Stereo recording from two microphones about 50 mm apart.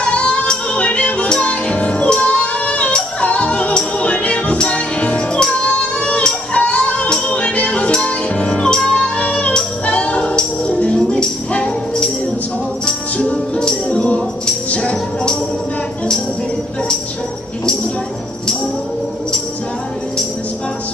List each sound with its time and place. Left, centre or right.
0.0 s music: left
13.2 s music: centre